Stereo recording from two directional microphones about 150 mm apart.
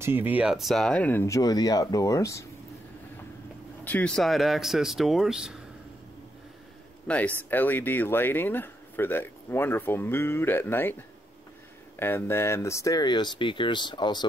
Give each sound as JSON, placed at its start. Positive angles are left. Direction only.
{"t": 0.0, "sound": "speech", "side_deg": -15}
{"t": 3.8, "sound": "speech", "side_deg": 10}
{"t": 7.1, "sound": "speech", "side_deg": 10}
{"t": 12.0, "sound": "speech", "side_deg": 15}